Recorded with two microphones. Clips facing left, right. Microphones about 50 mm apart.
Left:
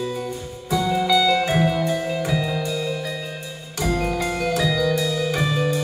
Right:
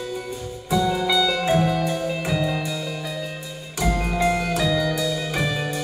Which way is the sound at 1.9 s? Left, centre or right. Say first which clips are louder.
Left 2 dB; centre.